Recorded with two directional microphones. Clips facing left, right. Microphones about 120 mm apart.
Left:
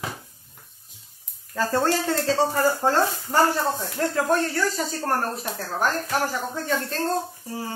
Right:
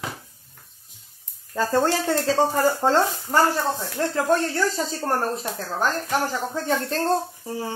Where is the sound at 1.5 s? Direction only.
20° right (ahead or behind).